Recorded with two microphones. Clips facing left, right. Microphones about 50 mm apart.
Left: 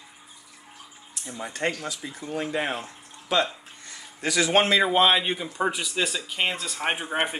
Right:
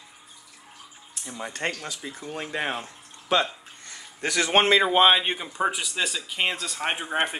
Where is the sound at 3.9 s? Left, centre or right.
Right.